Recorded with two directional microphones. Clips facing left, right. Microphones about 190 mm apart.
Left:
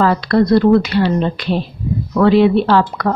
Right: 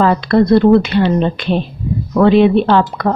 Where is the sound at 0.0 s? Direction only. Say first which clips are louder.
Right 2 dB; 20° right (ahead or behind).